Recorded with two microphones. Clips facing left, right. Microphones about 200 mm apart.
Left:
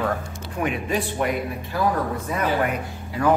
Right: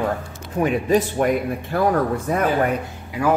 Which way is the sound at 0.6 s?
40° right (ahead or behind).